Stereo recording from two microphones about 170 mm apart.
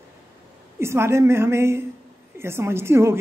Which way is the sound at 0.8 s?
15° right (ahead or behind).